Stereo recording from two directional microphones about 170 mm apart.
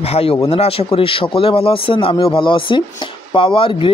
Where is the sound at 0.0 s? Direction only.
35° left (ahead or behind).